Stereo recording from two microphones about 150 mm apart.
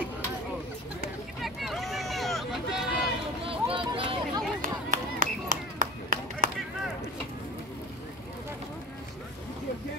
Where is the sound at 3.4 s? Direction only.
35° right (ahead or behind).